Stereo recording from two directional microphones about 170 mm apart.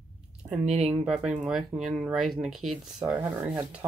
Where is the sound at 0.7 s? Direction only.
40° right (ahead or behind).